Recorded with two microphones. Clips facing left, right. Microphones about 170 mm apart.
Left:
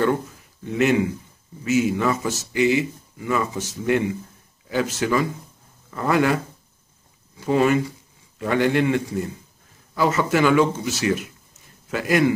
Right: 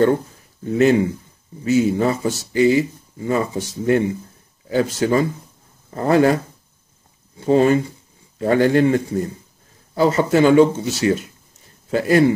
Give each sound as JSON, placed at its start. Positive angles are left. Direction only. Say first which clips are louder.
{"t": 0.7, "sound": "speech", "louder": "right 4 dB", "side_deg": -35}